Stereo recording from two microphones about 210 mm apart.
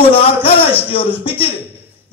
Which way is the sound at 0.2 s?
25° left (ahead or behind).